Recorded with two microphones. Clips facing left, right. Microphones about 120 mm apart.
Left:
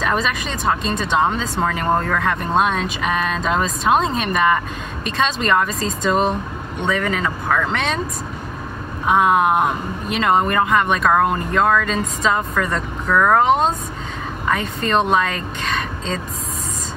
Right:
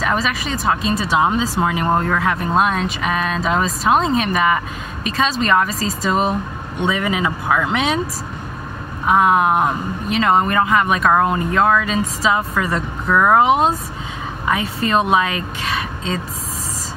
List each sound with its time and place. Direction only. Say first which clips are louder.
0.0 s speech: even; centre (ahead or behind)
9.0 s speech: right 1 dB; centre (ahead or behind)